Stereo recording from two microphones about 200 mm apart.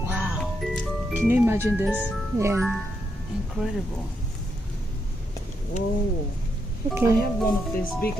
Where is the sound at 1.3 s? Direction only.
10° right (ahead or behind).